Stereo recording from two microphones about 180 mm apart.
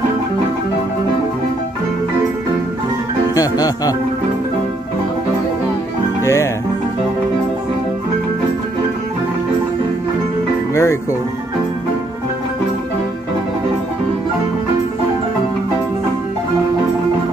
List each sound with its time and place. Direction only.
3.3 s speech: 20° left (ahead or behind)
6.2 s music: 15° left (ahead or behind)
10.7 s music: 15° left (ahead or behind)